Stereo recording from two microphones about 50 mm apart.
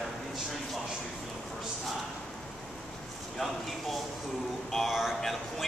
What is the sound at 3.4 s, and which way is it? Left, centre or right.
A man's voice, centre.